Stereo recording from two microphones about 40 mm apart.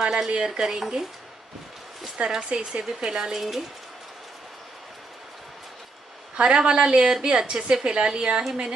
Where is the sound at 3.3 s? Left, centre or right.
Centre.